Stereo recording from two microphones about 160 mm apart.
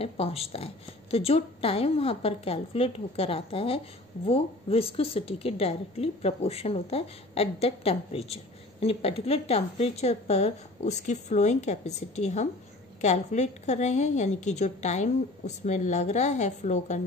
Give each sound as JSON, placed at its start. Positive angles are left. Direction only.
{"t": 0.0, "sound": "a woman's voice", "side_deg": 35}